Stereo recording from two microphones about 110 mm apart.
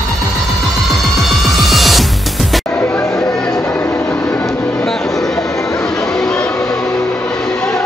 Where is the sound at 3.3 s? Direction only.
5° left (ahead or behind).